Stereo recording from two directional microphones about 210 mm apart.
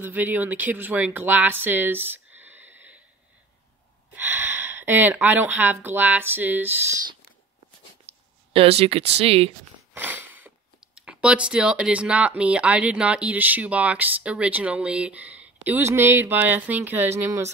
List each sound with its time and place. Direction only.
0.0 s speech: 10° right (ahead or behind)
4.1 s speech: 10° right (ahead or behind)
8.5 s speech: 30° right (ahead or behind)
9.9 s speech: 10° right (ahead or behind)